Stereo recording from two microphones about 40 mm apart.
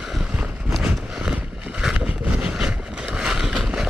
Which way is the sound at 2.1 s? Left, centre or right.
Right.